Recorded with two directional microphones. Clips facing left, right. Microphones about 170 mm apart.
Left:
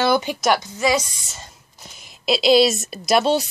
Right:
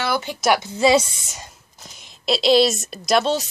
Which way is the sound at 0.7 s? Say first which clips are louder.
Right 4 dB; 30° right (ahead or behind).